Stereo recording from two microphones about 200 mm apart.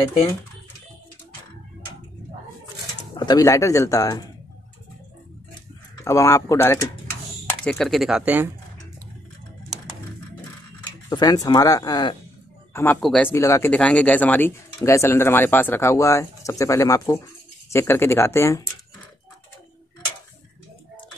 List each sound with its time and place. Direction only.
3.2 s speech: 20° left (ahead or behind)
6.0 s speech: 15° left (ahead or behind); by 8.5 s 5° right (ahead or behind)
11.1 s speech: 20° left (ahead or behind)
12.7 s speech: 10° left (ahead or behind)